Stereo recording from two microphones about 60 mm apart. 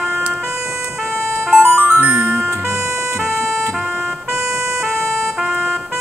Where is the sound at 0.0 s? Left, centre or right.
Centre.